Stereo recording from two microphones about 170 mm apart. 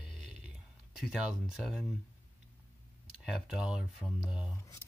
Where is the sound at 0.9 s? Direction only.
Centre (ahead or behind).